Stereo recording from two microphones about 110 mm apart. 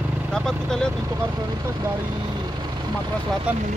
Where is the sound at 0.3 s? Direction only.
5° left (ahead or behind).